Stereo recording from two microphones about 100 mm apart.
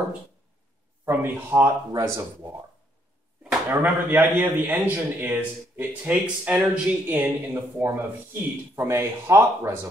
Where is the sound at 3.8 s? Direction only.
20° right (ahead or behind).